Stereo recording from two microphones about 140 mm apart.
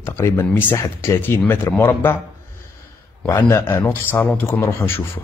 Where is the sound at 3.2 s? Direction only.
15° left (ahead or behind).